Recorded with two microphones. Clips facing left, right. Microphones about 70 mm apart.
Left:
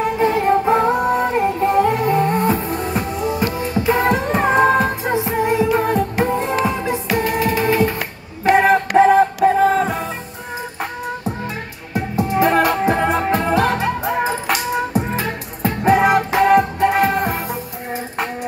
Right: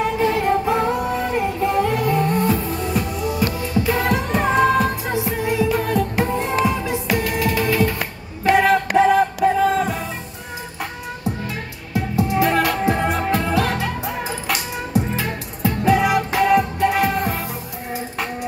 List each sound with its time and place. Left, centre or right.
0.2 s music: left
11.9 s music: left